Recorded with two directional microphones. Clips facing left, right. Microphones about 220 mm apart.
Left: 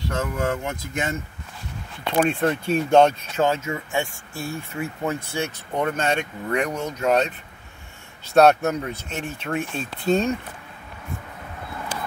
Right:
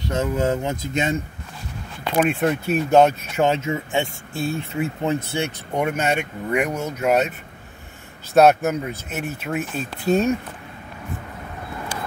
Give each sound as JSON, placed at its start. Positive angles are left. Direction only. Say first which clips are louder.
{"t": 0.1, "sound": "speech", "louder": "right 5 dB", "side_deg": -20}
{"t": 2.1, "sound": "speech", "louder": "right 1 dB", "side_deg": -10}
{"t": 3.4, "sound": "speech", "louder": "right 3 dB", "side_deg": -20}